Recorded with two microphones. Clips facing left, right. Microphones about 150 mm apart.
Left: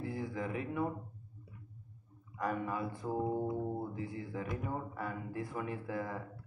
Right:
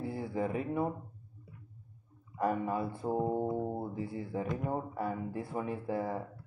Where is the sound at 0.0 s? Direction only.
30° right (ahead or behind).